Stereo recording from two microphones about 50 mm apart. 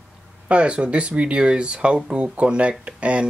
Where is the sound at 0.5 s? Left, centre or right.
Right.